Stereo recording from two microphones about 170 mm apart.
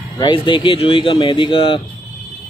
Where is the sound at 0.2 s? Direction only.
30° left (ahead or behind).